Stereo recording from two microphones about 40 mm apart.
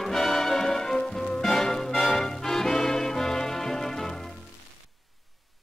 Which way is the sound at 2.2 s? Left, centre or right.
Centre.